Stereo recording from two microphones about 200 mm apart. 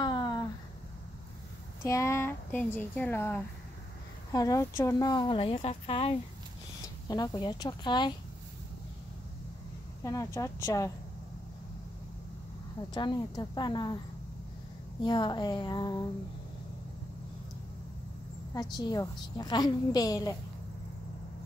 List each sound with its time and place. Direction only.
0.0 s a sound: 20° left (ahead or behind)
1.9 s speech: 15° left (ahead or behind)
10.0 s speech: 15° left (ahead or behind)
12.9 s speech: 20° left (ahead or behind)
15.0 s speech: 20° left (ahead or behind)
18.5 s speech: 20° left (ahead or behind)